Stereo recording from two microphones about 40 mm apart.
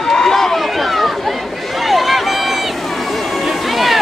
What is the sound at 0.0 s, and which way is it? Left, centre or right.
Run, centre.